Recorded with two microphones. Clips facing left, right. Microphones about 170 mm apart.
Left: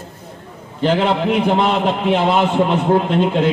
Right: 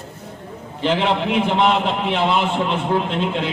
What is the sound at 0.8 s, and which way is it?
A man's voice, 40° left (ahead or behind).